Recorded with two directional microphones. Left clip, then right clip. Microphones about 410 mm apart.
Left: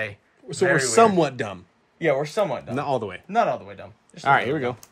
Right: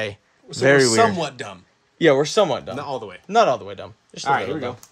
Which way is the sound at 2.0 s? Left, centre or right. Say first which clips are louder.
Right 6 dB; right.